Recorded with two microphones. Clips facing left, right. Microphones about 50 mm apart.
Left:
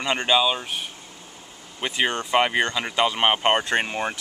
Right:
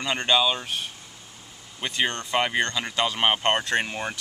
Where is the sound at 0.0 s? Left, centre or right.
Centre.